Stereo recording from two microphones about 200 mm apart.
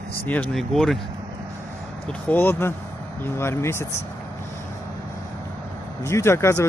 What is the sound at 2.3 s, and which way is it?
Speech, 10° left (ahead or behind).